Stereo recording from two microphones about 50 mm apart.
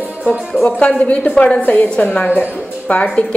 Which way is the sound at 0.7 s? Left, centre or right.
Centre.